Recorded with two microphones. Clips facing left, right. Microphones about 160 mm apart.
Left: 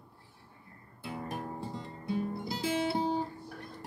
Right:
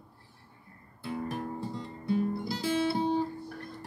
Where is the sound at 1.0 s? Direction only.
15° left (ahead or behind).